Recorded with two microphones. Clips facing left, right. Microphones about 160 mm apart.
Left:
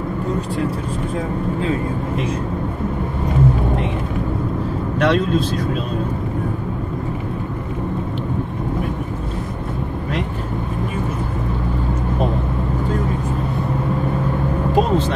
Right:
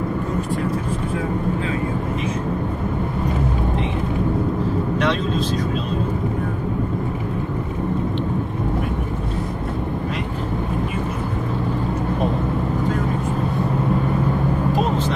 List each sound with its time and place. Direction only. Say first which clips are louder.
4.9 s vehicle: left 6 dB; 55° left (ahead or behind)